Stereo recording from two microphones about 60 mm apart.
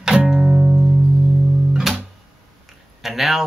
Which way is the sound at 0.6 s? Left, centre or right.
Right.